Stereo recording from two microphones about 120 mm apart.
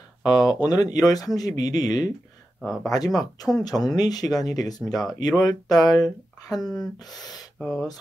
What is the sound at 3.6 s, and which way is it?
Speech, 35° left (ahead or behind).